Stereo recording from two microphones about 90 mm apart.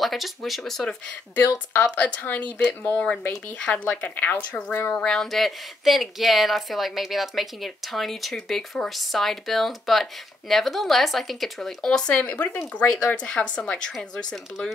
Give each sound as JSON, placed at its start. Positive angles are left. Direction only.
{"t": 0.0, "sound": "speech", "side_deg": 0}
{"t": 1.7, "sound": "speech", "side_deg": 20}
{"t": 5.0, "sound": "speech", "side_deg": 5}